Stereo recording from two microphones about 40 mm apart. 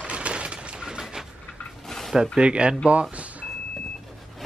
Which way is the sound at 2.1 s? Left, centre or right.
Centre.